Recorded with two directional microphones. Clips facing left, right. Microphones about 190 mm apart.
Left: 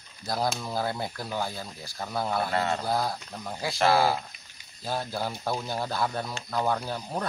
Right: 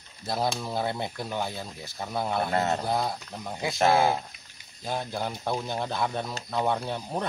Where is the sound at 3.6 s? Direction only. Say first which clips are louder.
Right 1 dB; 20° right (ahead or behind).